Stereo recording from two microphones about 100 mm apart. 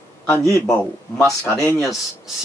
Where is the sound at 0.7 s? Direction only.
5° left (ahead or behind).